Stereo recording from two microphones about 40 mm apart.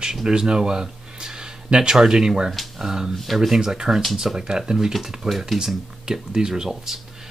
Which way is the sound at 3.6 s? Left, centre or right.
Centre.